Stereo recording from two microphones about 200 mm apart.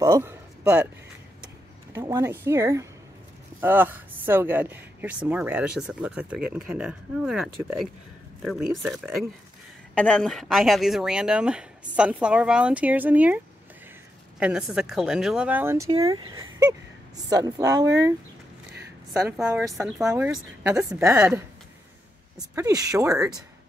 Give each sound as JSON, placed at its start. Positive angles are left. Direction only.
{"t": 0.0, "sound": "a sound", "side_deg": -15}
{"t": 2.0, "sound": "speech", "side_deg": -15}
{"t": 14.4, "sound": "speech", "side_deg": -5}
{"t": 19.4, "sound": "speech", "side_deg": -15}
{"t": 19.7, "sound": "speech", "side_deg": 0}
{"t": 22.6, "sound": "speech", "side_deg": -15}